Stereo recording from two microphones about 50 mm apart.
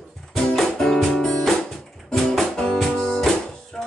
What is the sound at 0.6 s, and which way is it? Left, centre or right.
Music, centre.